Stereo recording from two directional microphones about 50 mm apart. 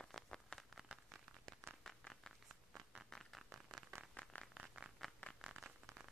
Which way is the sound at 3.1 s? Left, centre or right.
Centre.